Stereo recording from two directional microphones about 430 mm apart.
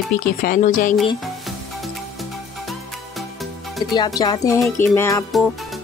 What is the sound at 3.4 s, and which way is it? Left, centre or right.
Music, centre.